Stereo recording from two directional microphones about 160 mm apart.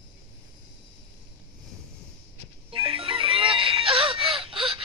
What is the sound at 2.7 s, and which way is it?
Music, 35° right (ahead or behind).